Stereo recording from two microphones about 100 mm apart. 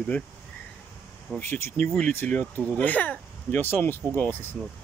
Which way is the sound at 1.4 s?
20° left (ahead or behind).